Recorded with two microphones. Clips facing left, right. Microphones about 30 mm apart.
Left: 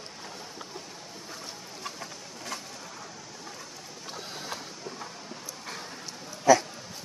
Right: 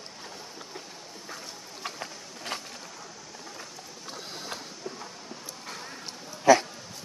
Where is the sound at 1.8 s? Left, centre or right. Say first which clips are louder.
Right 3 dB; right.